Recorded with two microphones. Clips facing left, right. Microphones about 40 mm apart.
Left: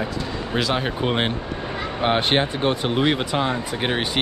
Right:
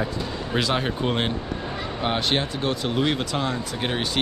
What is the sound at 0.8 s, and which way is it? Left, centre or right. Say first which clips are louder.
Speech: left 2 dB; centre.